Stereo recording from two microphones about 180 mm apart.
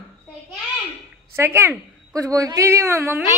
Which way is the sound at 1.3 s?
15° right (ahead or behind).